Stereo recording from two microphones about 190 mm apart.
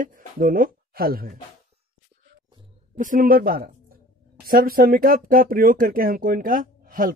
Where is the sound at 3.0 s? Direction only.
45° right (ahead or behind).